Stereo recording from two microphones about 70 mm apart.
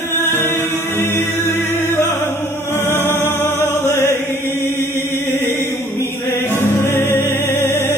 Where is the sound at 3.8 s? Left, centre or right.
Left.